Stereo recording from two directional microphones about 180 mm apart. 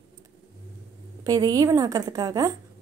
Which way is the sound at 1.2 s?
20° right (ahead or behind).